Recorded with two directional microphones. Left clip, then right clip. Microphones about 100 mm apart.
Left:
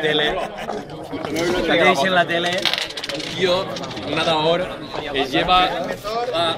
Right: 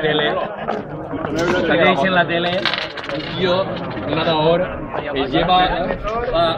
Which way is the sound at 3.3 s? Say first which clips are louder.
Right 1 dB; 15° left (ahead or behind).